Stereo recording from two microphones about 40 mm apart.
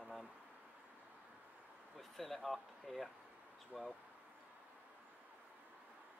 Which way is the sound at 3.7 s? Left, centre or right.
Centre.